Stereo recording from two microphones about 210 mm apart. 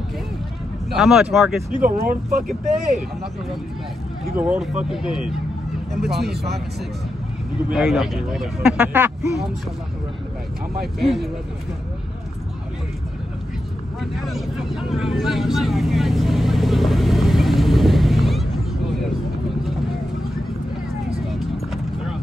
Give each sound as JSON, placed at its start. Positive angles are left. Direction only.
{"t": 0.9, "sound": "speech", "side_deg": 0}
{"t": 1.8, "sound": "speech", "side_deg": -40}
{"t": 4.4, "sound": "speech", "side_deg": -5}
{"t": 5.9, "sound": "speech", "side_deg": -50}
{"t": 7.7, "sound": "speech", "side_deg": 0}
{"t": 14.1, "sound": "vehicle", "side_deg": 0}